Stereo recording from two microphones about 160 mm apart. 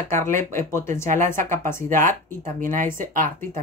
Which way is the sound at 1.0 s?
55° right (ahead or behind).